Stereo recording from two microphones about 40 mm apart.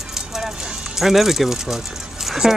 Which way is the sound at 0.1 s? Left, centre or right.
Centre.